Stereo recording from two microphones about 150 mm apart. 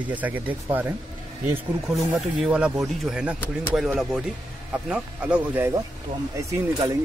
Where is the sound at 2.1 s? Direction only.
5° right (ahead or behind).